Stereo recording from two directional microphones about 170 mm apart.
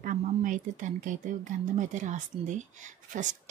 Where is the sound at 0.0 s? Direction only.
50° right (ahead or behind).